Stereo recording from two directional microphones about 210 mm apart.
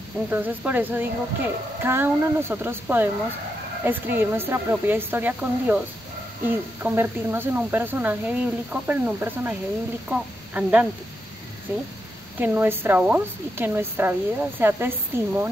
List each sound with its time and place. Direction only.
0.3 s a woman's voice: 10° right (ahead or behind)